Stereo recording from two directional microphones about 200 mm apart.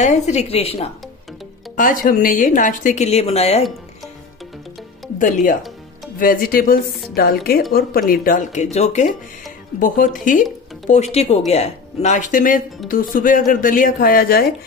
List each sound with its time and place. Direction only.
0.0 s a woman's voice: 35° left (ahead or behind)
1.8 s a woman's voice: 45° left (ahead or behind)
5.2 s a woman's voice: 45° left (ahead or behind)